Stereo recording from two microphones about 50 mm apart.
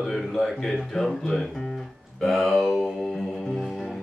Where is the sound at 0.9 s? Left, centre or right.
Centre.